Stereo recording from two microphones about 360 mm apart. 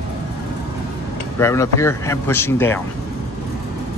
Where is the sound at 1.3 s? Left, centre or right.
Centre.